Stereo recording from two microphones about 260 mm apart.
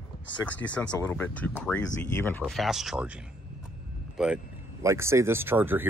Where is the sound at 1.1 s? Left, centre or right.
Centre.